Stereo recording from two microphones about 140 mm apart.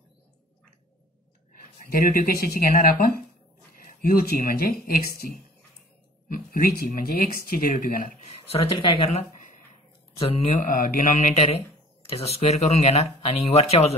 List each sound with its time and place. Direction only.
1.9 s speech: 80° left
8.7 s speech: 35° left (ahead or behind)
10.7 s speech: 70° left (ahead or behind); by 13.9 s 50° left (ahead or behind)